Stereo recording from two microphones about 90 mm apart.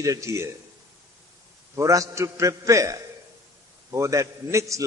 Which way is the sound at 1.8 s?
40° right (ahead or behind).